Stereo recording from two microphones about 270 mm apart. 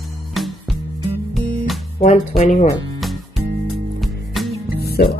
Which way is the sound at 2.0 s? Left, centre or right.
Left.